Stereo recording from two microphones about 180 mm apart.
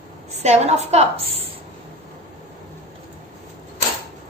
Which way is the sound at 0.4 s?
40° right (ahead or behind).